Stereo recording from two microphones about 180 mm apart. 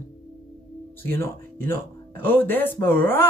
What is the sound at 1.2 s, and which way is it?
Speech, 10° left (ahead or behind).